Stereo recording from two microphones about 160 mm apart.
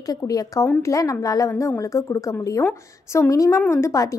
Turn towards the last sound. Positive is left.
turn(degrees=20)  # may be behind; listen again after turning